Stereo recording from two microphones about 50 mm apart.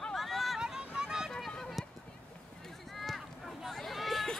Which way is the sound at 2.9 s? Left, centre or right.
Centre.